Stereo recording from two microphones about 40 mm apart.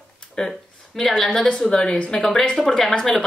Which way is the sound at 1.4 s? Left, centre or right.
Centre.